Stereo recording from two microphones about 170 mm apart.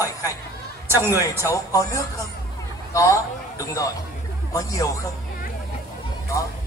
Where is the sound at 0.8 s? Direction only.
15° right (ahead or behind).